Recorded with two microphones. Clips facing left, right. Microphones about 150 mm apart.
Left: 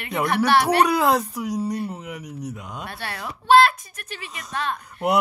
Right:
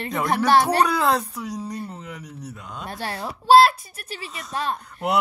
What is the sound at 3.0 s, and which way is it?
Speech, 35° right (ahead or behind).